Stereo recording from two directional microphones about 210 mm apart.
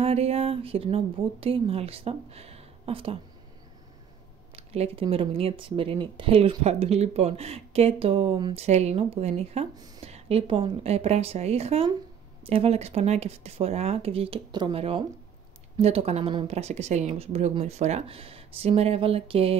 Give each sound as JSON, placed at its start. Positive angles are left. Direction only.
{"t": 0.0, "sound": "speech", "side_deg": -30}
{"t": 4.6, "sound": "speech", "side_deg": -30}